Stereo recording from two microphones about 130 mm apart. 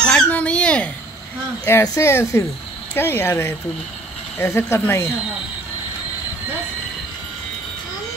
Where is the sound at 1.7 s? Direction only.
20° left (ahead or behind).